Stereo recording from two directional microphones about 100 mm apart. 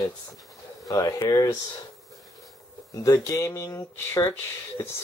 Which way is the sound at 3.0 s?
35° left (ahead or behind).